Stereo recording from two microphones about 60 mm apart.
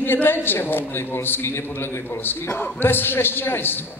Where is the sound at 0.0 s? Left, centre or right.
Left.